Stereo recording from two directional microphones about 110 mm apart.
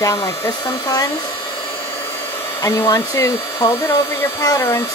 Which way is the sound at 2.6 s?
35° left (ahead or behind).